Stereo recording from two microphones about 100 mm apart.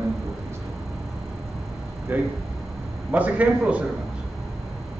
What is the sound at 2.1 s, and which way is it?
A man's voice, 20° right (ahead or behind).